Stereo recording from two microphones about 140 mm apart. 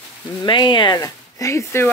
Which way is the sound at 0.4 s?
35° left (ahead or behind).